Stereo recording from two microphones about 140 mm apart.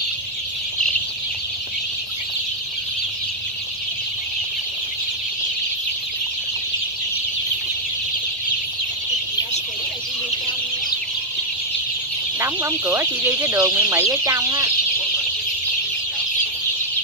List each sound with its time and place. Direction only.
12.4 s speech: 20° right (ahead or behind)